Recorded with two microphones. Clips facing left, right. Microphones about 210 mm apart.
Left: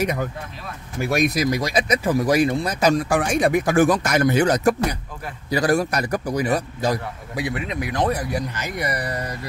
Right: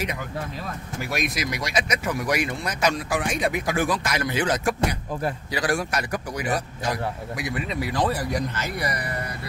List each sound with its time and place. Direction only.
0.0 s a man's voice: 45° left (ahead or behind); by 8.8 s 15° left (ahead or behind)
8.8 s a man's voice: 35° left (ahead or behind)